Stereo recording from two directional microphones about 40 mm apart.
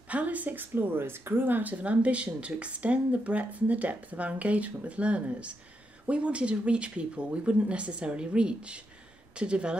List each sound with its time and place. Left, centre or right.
0.1 s speech: right
0.7 s speech: right